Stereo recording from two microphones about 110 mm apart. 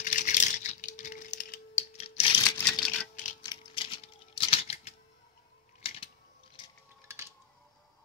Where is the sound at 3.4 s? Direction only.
45° left (ahead or behind); by 4.9 s 65° left (ahead or behind).